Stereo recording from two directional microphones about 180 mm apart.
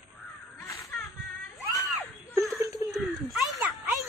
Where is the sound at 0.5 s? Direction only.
15° left (ahead or behind).